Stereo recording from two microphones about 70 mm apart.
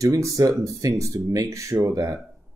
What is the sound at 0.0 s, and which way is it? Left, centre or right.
Speech, right.